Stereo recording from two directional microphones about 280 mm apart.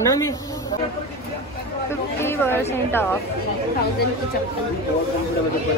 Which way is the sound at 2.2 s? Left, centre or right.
Centre.